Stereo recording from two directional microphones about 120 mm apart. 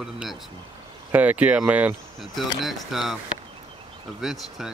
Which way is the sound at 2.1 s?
Centre (ahead or behind).